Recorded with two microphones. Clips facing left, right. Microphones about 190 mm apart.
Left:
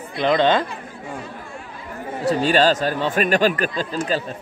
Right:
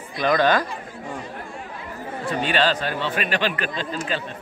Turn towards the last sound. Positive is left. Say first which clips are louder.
# left 4 dB
turn(degrees=40)  # may be behind; listen again after turning